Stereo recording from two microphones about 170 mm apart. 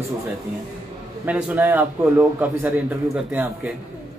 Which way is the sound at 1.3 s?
10° right (ahead or behind).